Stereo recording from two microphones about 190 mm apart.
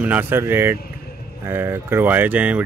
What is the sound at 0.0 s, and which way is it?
Speech, 10° right (ahead or behind).